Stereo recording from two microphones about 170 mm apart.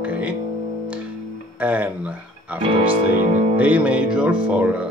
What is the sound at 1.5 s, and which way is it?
Speech, 10° right (ahead or behind).